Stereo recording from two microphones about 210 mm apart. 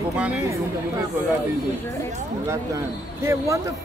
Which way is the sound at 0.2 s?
5° right (ahead or behind).